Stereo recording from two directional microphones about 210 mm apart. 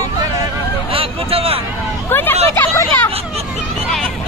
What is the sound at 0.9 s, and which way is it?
Vehicle, 25° right (ahead or behind).